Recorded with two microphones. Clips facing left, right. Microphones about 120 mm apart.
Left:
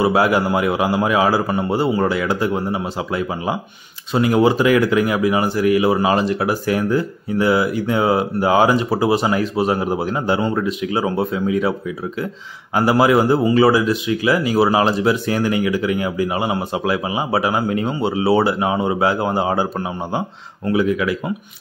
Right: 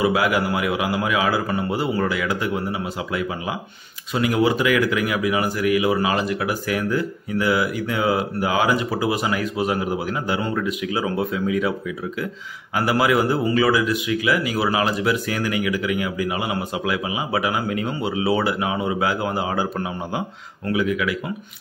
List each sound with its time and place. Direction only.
0.0 s speech: 35° left (ahead or behind)
12.7 s speech: 30° left (ahead or behind)
20.7 s speech: 35° left (ahead or behind)